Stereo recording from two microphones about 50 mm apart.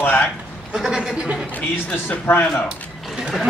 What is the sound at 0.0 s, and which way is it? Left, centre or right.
Bleat, left.